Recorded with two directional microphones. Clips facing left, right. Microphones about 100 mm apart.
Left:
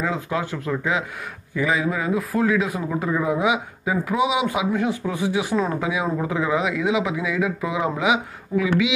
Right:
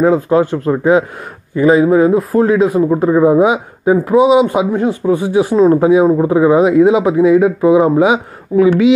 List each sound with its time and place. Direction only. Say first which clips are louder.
0.0 s speech: right 14 dB; 40° right (ahead or behind)